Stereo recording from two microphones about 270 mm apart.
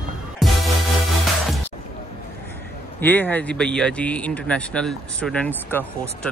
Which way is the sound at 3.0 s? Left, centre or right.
Centre.